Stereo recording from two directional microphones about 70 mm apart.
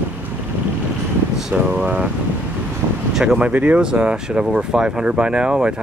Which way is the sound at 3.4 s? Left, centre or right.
Centre.